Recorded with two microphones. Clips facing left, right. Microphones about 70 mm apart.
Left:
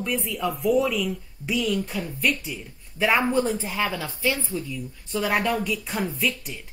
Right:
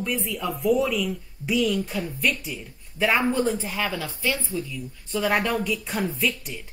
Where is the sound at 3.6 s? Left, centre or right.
Centre.